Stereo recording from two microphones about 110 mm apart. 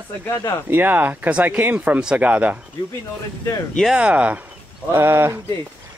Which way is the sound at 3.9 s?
10° right (ahead or behind).